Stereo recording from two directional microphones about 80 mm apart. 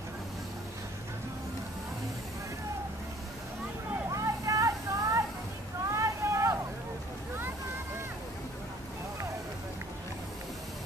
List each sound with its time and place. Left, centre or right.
3.9 s vehicle: right
5.9 s boat: right